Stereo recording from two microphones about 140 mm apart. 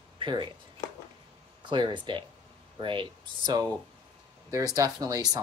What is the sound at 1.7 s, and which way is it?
Speech, 35° right (ahead or behind).